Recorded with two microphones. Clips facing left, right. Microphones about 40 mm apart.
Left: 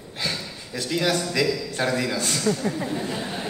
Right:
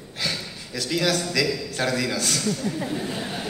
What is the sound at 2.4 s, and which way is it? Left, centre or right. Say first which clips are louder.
Speech: left 3 dB; left.